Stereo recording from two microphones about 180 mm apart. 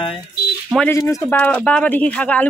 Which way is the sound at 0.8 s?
15° left (ahead or behind).